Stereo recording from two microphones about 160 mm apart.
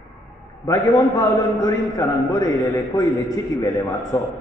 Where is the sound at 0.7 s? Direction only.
20° left (ahead or behind).